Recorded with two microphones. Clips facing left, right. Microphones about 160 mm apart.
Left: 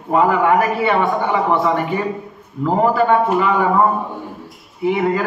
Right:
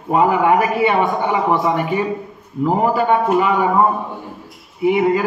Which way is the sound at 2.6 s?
15° right (ahead or behind).